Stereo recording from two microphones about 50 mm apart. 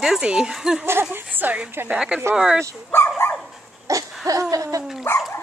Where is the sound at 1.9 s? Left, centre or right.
Centre.